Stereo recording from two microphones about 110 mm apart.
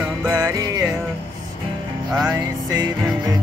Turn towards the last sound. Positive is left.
turn(degrees=-30)  # may be behind; listen again after turning